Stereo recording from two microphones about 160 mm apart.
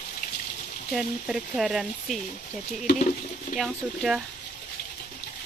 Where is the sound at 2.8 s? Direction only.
50° left (ahead or behind).